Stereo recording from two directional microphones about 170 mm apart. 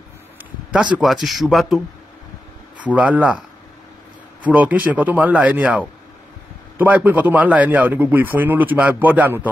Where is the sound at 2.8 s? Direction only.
10° right (ahead or behind).